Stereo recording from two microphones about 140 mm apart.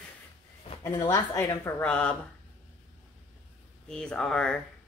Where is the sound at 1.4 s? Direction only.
15° left (ahead or behind).